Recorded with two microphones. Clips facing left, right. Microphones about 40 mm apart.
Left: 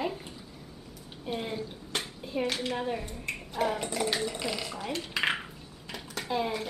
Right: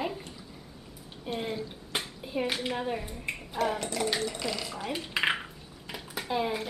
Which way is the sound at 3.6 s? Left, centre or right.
Centre.